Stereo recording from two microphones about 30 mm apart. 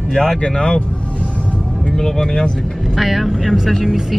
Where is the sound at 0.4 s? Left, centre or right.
Left.